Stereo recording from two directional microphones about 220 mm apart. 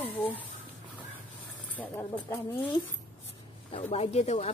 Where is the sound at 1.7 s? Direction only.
10° left (ahead or behind).